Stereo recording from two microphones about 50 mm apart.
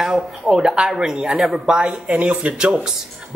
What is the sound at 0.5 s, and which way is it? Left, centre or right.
Speech, centre.